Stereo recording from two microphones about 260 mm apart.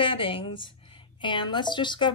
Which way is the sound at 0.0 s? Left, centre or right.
Centre.